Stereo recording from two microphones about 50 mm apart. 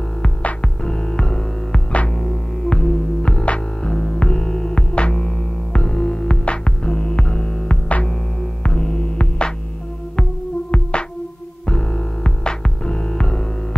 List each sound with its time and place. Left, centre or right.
0.2 s throbbing: left
8.6 s music: centre
10.7 s music: left